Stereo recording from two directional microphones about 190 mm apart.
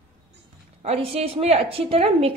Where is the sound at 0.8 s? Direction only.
35° right (ahead or behind).